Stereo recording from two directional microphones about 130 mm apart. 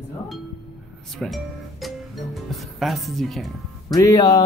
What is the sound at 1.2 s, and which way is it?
Music, centre (ahead or behind).